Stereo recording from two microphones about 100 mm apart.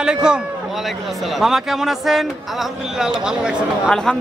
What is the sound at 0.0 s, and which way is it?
Speech, 10° right (ahead or behind).